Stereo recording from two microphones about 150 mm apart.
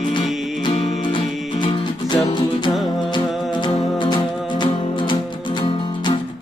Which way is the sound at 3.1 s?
30° left (ahead or behind).